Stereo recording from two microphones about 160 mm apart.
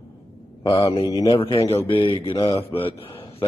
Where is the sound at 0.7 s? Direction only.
25° left (ahead or behind).